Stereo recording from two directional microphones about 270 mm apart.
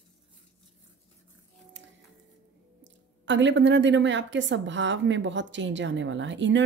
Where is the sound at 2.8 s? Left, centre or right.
Right.